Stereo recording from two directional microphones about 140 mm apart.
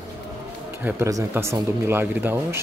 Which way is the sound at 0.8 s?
15° right (ahead or behind).